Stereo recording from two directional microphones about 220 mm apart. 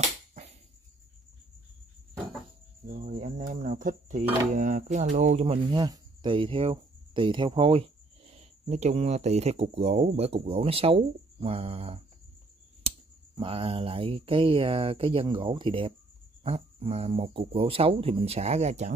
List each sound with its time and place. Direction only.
0.3 s a sound: 30° right (ahead or behind)
2.9 s speech: 35° right (ahead or behind)
5.7 s speech: 20° right (ahead or behind)
13.4 s speech: 25° right (ahead or behind)